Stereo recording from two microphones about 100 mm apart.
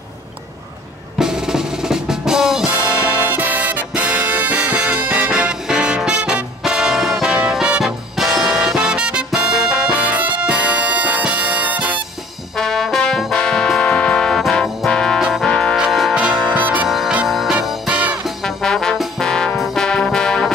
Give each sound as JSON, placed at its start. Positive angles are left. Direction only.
{"t": 1.1, "sound": "music", "side_deg": -5}
{"t": 12.5, "sound": "brass instrument", "side_deg": 5}
{"t": 15.2, "sound": "trombone", "side_deg": 0}
{"t": 15.7, "sound": "music", "side_deg": 0}
{"t": 16.5, "sound": "music", "side_deg": -15}
{"t": 16.8, "sound": "music", "side_deg": -5}
{"t": 18.4, "sound": "trombone", "side_deg": 5}
{"t": 19.6, "sound": "music", "side_deg": 5}